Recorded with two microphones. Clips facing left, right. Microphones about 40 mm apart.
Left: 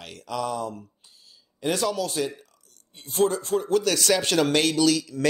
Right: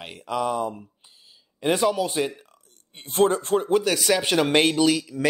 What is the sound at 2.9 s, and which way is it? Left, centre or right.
Speech, right.